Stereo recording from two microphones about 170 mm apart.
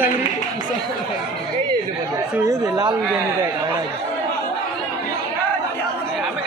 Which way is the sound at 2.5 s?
20° right (ahead or behind).